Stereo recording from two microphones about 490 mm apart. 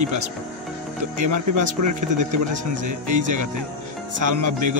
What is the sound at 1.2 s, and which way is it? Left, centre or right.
Speech, right.